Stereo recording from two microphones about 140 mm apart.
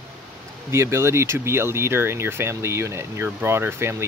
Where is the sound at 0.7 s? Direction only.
20° right (ahead or behind).